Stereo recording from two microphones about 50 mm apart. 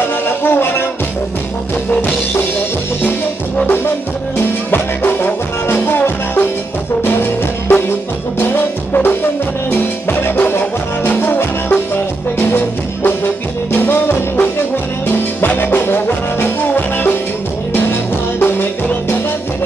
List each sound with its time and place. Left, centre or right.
0.4 s music: left
4.4 s music: left
7.0 s music: left
18.4 s music: left